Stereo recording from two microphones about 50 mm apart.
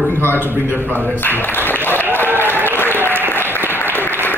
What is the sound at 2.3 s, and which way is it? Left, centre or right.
Applause, left.